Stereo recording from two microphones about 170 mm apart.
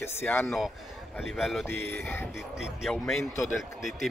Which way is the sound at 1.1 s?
Centre (ahead or behind).